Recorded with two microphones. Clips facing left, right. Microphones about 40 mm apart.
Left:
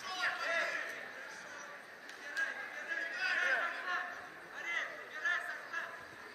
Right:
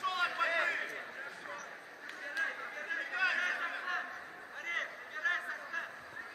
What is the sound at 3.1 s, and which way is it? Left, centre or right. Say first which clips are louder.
Chatter: right 5 dB; right.